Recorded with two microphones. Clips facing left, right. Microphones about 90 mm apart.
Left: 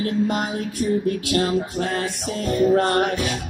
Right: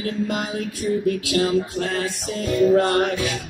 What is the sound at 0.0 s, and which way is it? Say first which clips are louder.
Music: left 3 dB; 45° left (ahead or behind).